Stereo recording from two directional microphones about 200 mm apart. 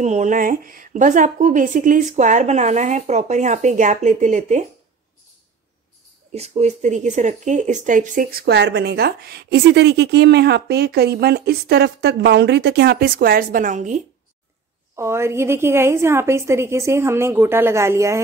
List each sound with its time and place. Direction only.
0.0 s a woman's voice: 35° right (ahead or behind)
6.3 s speech: 30° right (ahead or behind)
15.0 s a woman's voice: 15° right (ahead or behind)